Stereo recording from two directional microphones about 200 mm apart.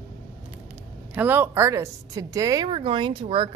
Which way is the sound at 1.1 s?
10° right (ahead or behind).